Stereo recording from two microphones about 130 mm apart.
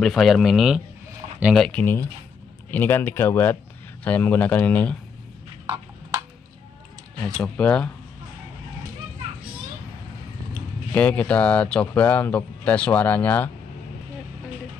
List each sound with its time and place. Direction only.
0.0 s speech: centre (ahead or behind)
1.7 s speech: 10° left (ahead or behind)
7.2 s speech: 5° left (ahead or behind)
10.9 s speech: 10° left (ahead or behind)